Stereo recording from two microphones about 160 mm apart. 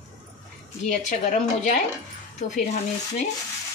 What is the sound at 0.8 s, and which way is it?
Speech, 50° left (ahead or behind).